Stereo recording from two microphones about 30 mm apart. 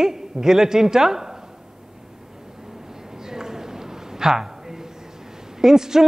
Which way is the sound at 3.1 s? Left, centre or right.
Centre.